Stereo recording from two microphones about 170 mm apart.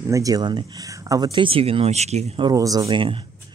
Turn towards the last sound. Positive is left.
turn(degrees=-30)  # may be behind; listen again after turning